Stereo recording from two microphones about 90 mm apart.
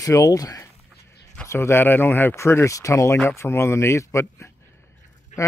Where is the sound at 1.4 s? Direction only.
25° left (ahead or behind).